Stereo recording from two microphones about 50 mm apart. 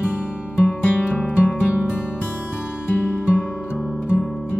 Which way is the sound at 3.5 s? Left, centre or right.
Centre.